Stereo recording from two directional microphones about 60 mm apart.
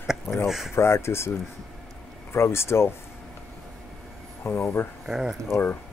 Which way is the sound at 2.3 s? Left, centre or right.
Left.